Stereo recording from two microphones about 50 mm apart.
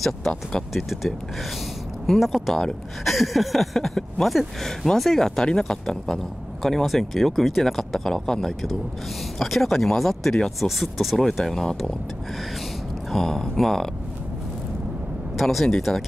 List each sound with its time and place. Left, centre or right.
0.3 s speech: centre
0.7 s speech: centre
13.1 s speech: centre
15.3 s speech: centre